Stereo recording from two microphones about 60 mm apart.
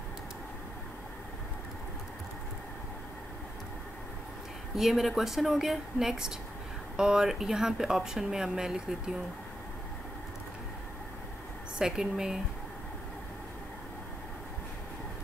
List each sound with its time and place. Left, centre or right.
4.7 s speech: centre
11.8 s speech: centre